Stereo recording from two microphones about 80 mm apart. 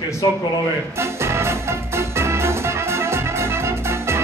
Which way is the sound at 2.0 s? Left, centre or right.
Right.